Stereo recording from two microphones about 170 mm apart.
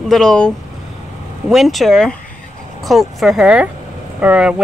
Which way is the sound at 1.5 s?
Centre (ahead or behind).